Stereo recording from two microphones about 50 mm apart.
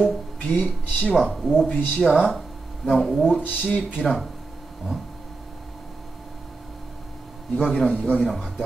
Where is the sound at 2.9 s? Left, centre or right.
Centre.